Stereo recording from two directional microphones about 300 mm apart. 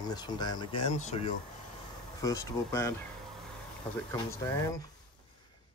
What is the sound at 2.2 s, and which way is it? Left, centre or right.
Speech, centre.